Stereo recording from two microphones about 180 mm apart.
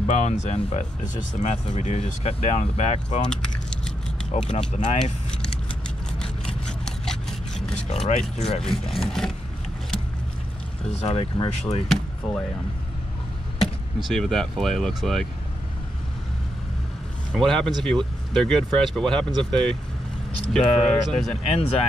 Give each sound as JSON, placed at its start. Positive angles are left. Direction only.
{"t": 0.0, "sound": "speech", "side_deg": 35}
{"t": 3.3, "sound": "typing", "side_deg": 5}
{"t": 4.3, "sound": "speech", "side_deg": 40}
{"t": 6.1, "sound": "a sound", "side_deg": 5}
{"t": 7.9, "sound": "speech", "side_deg": 35}
{"t": 8.6, "sound": "speech", "side_deg": 0}
{"t": 11.0, "sound": "speech", "side_deg": 35}
{"t": 13.9, "sound": "speech", "side_deg": 0}
{"t": 17.3, "sound": "speech", "side_deg": 5}
{"t": 21.3, "sound": "speech", "side_deg": 35}